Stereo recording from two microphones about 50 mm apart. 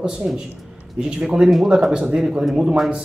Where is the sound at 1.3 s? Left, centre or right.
Centre.